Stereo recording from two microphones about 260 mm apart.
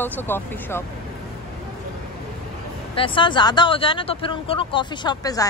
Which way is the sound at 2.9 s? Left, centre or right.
Centre.